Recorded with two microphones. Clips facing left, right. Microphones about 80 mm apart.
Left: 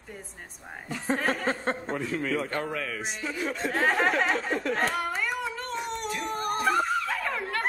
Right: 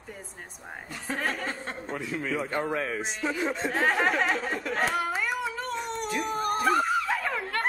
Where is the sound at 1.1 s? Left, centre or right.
Centre.